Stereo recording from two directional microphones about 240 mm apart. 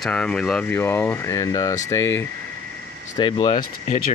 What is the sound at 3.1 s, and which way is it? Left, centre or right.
Speech, centre.